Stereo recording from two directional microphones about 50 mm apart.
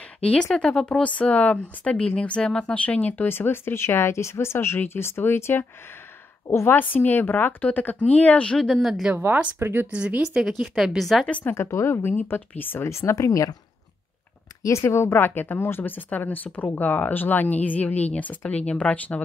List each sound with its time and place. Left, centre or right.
0.2 s speech: left
3.3 s a woman's voice: left
6.4 s a woman's voice: left
6.7 s speech: left
8.5 s speech: centre
9.1 s speech: right
9.6 s speech: right
9.8 s speech: right
10.4 s speech: centre
11.5 s a woman's voice: left
12.8 s speech: left
14.6 s a woman's voice: left